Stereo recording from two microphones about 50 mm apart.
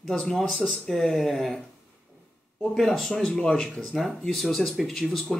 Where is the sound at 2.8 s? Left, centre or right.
Centre.